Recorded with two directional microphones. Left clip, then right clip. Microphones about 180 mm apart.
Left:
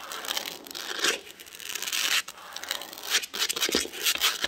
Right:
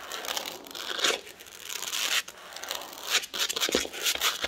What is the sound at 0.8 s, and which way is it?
Crumpling, 20° left (ahead or behind).